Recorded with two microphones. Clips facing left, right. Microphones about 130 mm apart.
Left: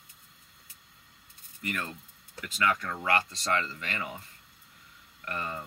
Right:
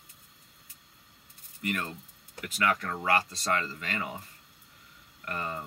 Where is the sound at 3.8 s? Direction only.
25° right (ahead or behind).